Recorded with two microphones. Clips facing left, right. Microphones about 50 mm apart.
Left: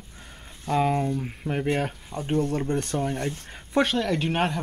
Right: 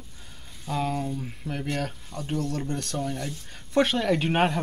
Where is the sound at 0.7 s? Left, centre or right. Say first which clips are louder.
Left 5 dB; left.